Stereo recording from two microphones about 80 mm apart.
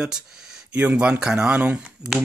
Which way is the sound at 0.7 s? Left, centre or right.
Centre.